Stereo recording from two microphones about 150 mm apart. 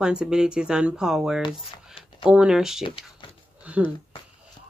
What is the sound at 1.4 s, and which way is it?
Speech, 35° left (ahead or behind).